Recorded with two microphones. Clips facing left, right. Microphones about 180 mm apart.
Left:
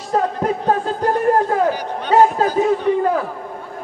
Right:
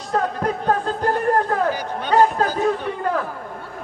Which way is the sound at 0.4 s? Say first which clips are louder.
Left 3 dB; 5° left (ahead or behind).